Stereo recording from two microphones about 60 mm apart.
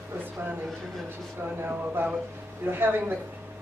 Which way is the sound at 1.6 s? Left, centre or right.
Right.